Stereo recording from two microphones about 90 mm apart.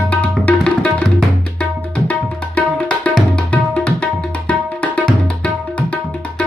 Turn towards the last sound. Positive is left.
turn(degrees=15)  # may be behind; listen again after turning